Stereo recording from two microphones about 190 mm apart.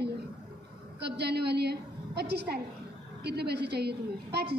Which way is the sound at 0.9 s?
60° right (ahead or behind).